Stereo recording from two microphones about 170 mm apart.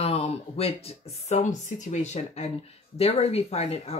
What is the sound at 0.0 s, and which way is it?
Speech, 35° left (ahead or behind).